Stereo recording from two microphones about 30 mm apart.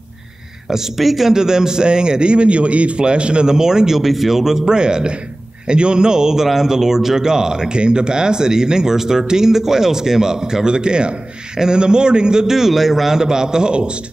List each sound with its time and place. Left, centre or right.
0.9 s a man's voice: centre
1.3 s a man's voice: right
3.0 s a man's voice: right
3.4 s speech: right
4.0 s a man's voice: centre
4.7 s speech: right
12.4 s a man's voice: centre
13.1 s speech: right